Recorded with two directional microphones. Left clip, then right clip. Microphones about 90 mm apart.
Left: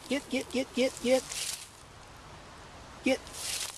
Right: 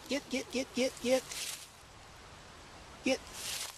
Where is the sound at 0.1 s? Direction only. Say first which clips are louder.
Left 4 dB; 25° right (ahead or behind).